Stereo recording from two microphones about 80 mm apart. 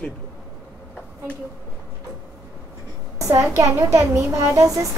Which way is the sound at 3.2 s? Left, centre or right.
Right.